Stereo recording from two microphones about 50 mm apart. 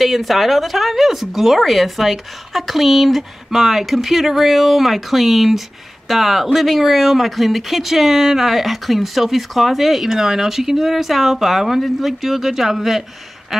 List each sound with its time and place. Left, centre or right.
0.0 s speech: centre